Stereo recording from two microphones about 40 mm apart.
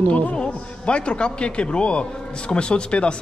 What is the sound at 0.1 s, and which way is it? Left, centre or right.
A man's voice, left.